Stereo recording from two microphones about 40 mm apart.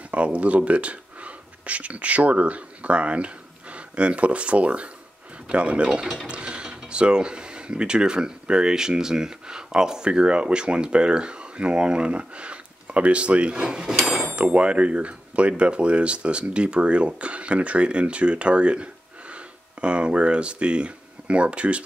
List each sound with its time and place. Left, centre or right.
0.1 s speech: right